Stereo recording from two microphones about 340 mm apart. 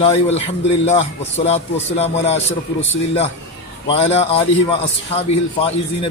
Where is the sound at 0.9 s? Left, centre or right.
Centre.